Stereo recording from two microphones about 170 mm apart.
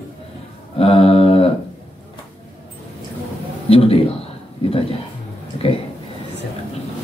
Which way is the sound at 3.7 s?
35° left (ahead or behind).